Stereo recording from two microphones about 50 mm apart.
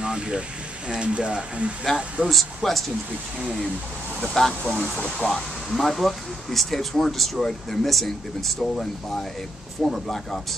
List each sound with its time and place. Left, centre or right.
0.0 s a sound: centre
0.8 s speech: right
2.2 s speech: centre
4.2 s speech: centre